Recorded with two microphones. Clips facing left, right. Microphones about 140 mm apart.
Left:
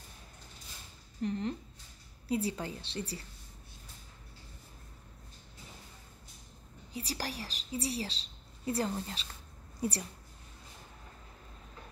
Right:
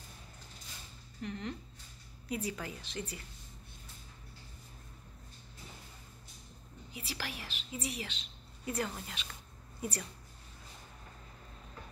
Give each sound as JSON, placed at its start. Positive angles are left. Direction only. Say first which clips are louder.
{"t": 1.2, "sound": "a woman's voice", "louder": "left 6 dB", "side_deg": 35}
{"t": 6.9, "sound": "a woman's voice", "louder": "left 4 dB", "side_deg": 40}